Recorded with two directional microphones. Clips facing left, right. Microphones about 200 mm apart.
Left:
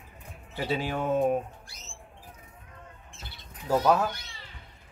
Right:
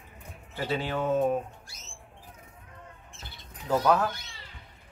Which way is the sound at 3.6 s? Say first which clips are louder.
Left 1 dB; 5° left (ahead or behind).